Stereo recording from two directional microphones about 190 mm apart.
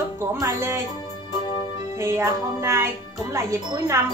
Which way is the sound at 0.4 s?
15° right (ahead or behind).